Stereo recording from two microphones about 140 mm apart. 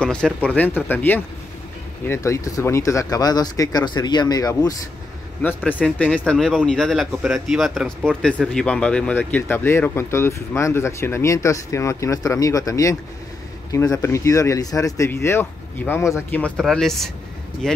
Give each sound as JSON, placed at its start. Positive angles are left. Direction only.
{"t": 0.0, "sound": "speech", "side_deg": 5}
{"t": 5.7, "sound": "speech", "side_deg": 10}